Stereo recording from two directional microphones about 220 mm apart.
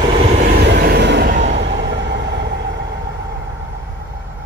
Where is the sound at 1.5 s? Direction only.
50° right (ahead or behind).